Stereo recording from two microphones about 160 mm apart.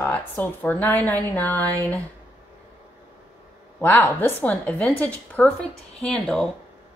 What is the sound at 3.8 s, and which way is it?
A woman's voice, 10° left (ahead or behind).